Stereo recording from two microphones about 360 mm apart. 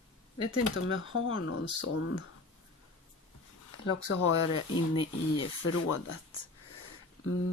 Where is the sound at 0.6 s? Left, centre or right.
Left.